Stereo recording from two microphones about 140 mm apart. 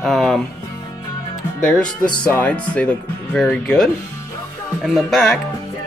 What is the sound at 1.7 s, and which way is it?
Speech, 5° left (ahead or behind).